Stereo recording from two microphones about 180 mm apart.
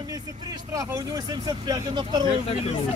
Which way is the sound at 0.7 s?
20° right (ahead or behind).